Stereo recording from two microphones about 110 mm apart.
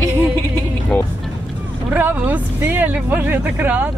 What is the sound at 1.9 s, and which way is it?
Speech, 15° right (ahead or behind).